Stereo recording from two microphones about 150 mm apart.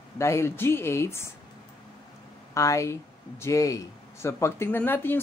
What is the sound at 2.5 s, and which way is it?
Speech, 20° left (ahead or behind).